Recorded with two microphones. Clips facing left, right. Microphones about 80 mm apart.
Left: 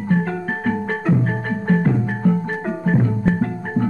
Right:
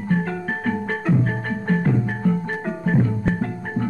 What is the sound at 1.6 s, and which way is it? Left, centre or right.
Music, left.